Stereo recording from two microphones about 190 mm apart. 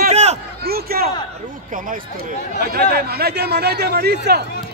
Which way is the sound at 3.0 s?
55° right (ahead or behind).